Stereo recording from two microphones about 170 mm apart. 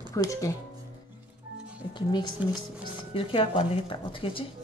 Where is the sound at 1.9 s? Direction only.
25° left (ahead or behind).